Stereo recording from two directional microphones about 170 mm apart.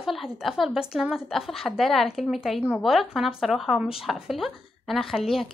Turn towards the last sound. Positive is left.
turn(degrees=0)  # may be behind; listen again after turning